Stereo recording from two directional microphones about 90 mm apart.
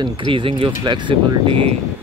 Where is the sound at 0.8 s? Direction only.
60° right (ahead or behind); by 1.6 s 80° right.